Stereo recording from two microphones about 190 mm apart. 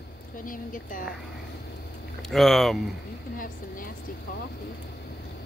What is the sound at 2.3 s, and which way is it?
Speech, centre (ahead or behind).